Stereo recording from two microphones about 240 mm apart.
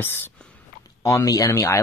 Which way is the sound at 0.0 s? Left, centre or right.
Centre.